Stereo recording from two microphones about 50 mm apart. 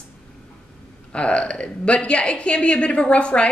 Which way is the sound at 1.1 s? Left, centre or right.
Left.